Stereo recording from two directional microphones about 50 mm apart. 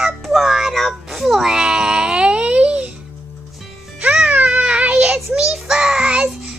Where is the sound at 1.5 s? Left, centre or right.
Centre.